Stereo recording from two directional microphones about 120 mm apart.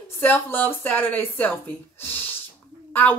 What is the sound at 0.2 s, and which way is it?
Speech, 15° left (ahead or behind).